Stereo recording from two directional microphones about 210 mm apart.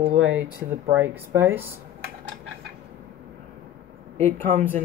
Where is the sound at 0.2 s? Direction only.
5° right (ahead or behind).